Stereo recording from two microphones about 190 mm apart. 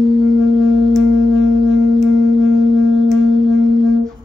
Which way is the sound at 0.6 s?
Centre (ahead or behind).